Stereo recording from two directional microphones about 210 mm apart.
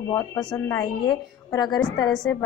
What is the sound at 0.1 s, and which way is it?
A woman's voice, 15° left (ahead or behind).